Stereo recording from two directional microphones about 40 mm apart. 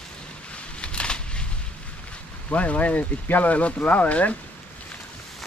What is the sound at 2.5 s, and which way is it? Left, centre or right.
Speech, left.